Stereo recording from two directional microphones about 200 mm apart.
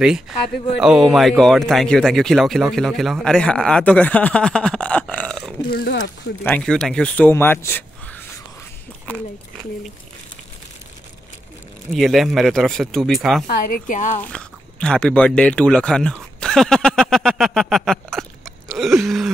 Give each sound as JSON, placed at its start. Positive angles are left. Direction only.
{"t": 0.7, "sound": "speech", "side_deg": 0}
{"t": 5.7, "sound": "a woman's voice", "side_deg": 50}
{"t": 6.4, "sound": "speech", "side_deg": 5}
{"t": 11.9, "sound": "speech", "side_deg": 0}
{"t": 13.5, "sound": "a woman's voice", "side_deg": 45}
{"t": 14.2, "sound": "speech", "side_deg": 5}
{"t": 18.7, "sound": "a sound", "side_deg": 0}